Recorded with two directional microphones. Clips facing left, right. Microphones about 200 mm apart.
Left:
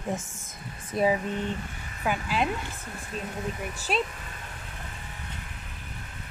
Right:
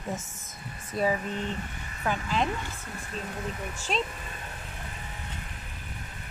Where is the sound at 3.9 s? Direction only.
10° left (ahead or behind).